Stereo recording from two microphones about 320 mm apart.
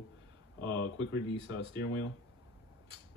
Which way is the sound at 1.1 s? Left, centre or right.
Left.